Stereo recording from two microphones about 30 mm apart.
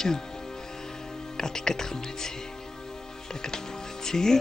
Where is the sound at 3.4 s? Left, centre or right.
Centre.